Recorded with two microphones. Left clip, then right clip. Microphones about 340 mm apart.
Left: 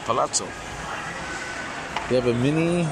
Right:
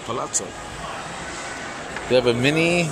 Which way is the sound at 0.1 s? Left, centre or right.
Centre.